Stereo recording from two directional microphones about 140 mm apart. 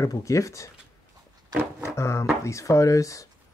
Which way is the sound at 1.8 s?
20° left (ahead or behind).